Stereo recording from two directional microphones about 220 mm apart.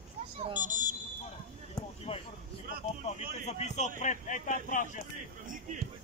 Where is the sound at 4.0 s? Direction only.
35° left (ahead or behind).